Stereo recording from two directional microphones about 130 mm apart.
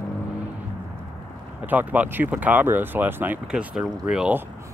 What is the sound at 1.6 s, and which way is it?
Speech, 15° right (ahead or behind).